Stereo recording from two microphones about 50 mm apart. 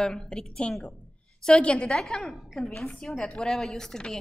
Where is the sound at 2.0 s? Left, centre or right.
Centre.